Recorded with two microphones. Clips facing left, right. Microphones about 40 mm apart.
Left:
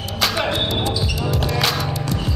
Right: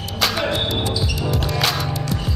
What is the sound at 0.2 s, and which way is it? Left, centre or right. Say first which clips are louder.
Music: even; centre.